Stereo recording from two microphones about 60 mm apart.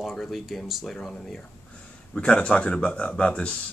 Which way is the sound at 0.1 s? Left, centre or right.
Centre.